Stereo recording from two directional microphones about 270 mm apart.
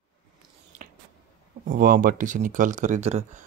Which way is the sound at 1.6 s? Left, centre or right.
Right.